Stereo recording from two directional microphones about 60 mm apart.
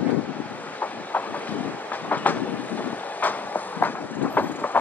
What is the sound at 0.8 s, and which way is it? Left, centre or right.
Train, left.